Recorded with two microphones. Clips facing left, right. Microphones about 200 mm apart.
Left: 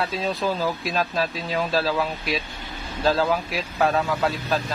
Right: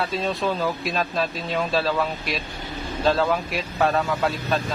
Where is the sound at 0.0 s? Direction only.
Centre (ahead or behind).